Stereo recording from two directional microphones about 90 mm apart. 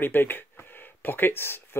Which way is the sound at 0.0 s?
25° left (ahead or behind).